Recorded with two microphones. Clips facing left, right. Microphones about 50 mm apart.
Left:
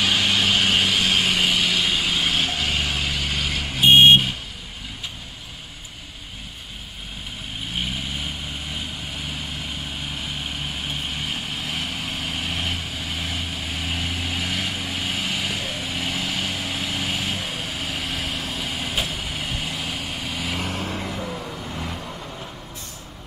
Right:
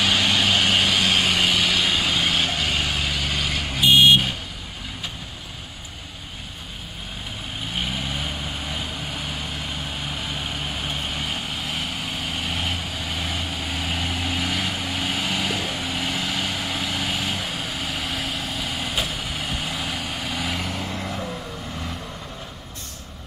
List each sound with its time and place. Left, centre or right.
0.0 s vehicle: centre
1.8 s vehicle: centre; by 3.4 s left
3.4 s vehicle: centre
3.8 s vehicle: left
7.7 s vehicle: centre
11.5 s vehicle: left
20.1 s vehicle: centre
20.5 s vehicle: left
20.8 s vehicle: centre